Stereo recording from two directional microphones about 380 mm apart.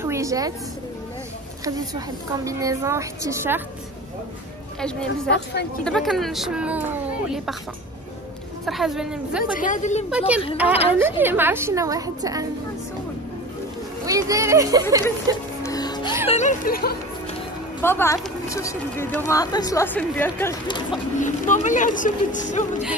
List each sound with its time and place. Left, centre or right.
0.0 s a sound: centre
1.6 s a woman's voice: centre
4.7 s speech: centre
5.3 s speech: left
5.9 s speech: centre
8.6 s speech: centre
9.6 s speech: centre
10.1 s a woman's voice: centre
14.0 s a woman's voice: centre
15.6 s music: centre
16.3 s speech: centre
17.8 s a woman's voice: centre
21.2 s speech: centre